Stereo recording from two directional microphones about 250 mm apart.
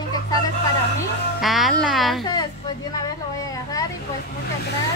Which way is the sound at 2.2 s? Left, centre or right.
Centre.